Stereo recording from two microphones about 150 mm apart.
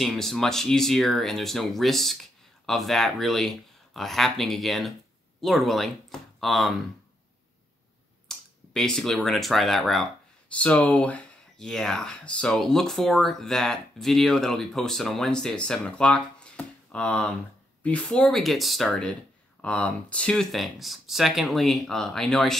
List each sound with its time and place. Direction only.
0.0 s speech: centre (ahead or behind)
8.3 s speech: 5° left (ahead or behind)